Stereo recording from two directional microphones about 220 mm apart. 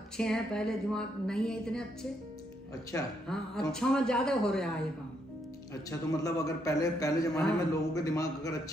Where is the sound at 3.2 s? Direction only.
5° left (ahead or behind).